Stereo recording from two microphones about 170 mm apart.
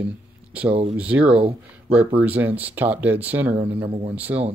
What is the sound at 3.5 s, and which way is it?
Speech, 35° right (ahead or behind).